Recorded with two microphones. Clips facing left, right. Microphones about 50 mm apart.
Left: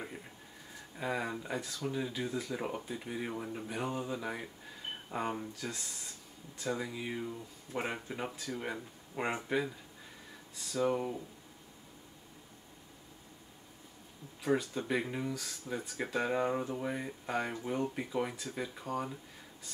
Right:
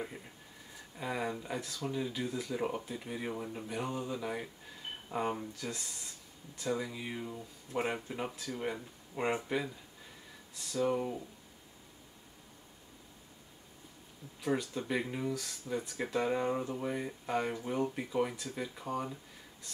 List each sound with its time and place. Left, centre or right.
0.9 s speech: centre
14.4 s speech: centre